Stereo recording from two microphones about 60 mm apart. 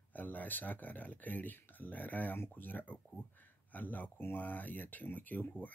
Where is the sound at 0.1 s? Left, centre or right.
Left.